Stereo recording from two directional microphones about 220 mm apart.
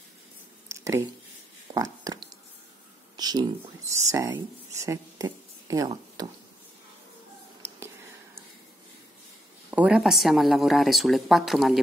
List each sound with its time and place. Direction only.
0.7 s a sound: 15° right (ahead or behind)
4.1 s speech: 15° right (ahead or behind)
9.7 s speech: 5° right (ahead or behind)